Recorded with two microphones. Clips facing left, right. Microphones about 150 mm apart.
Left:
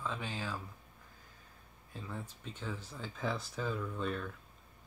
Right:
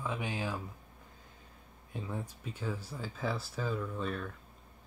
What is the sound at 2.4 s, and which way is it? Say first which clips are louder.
Speech: right 4 dB; 5° right (ahead or behind).